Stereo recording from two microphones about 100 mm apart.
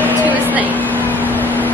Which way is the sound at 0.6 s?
15° left (ahead or behind).